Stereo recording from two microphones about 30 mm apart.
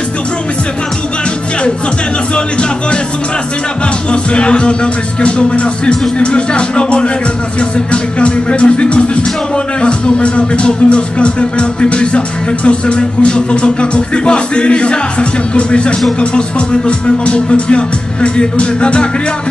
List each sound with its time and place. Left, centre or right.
4.1 s speech: left